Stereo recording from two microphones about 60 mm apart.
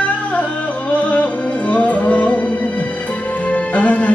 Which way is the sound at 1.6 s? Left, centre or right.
Left.